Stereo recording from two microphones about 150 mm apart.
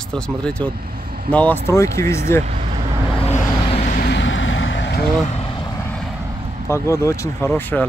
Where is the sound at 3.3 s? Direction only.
50° left (ahead or behind).